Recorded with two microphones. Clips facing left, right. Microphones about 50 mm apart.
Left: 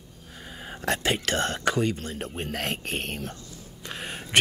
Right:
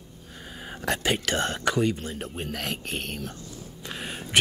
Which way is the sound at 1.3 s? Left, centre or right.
Right.